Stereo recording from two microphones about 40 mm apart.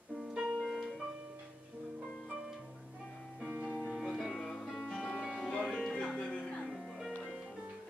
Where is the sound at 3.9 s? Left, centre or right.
Centre.